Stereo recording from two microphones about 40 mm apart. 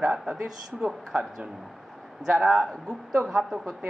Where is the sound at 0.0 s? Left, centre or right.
Centre.